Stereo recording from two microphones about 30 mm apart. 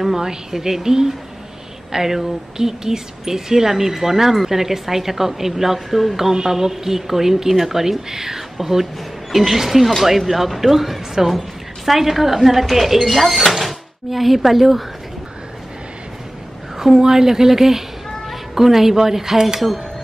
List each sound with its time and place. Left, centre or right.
0.0 s a woman's voice: centre
16.7 s a woman's voice: centre